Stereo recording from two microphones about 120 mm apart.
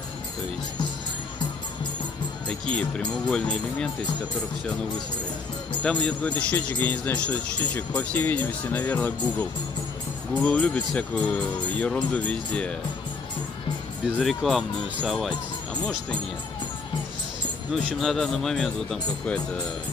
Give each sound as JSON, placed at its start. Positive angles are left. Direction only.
{"t": 2.4, "sound": "speech", "side_deg": 10}
{"t": 5.8, "sound": "speech", "side_deg": 10}
{"t": 14.2, "sound": "speech", "side_deg": 0}
{"t": 18.0, "sound": "speech", "side_deg": 5}